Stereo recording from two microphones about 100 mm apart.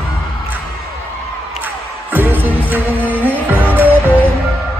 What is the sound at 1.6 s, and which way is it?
Music, 20° right (ahead or behind).